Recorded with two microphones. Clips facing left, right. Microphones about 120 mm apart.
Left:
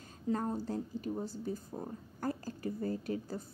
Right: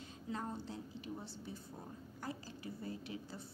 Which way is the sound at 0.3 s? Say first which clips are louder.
Left 9 dB; 45° left (ahead or behind).